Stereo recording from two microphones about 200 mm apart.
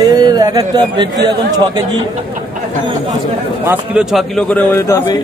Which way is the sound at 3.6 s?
5° right (ahead or behind).